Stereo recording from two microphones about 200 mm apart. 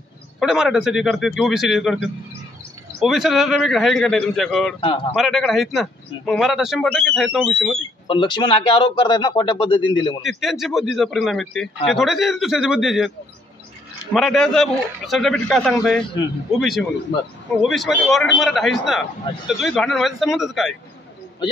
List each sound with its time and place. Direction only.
0.4 s a man's voice: centre (ahead or behind)
4.7 s speech: 25° left (ahead or behind)
5.1 s a man's voice: centre (ahead or behind)
8.1 s speech: 25° left (ahead or behind)
10.2 s a man's voice: centre (ahead or behind)
14.1 s a man's voice: centre (ahead or behind)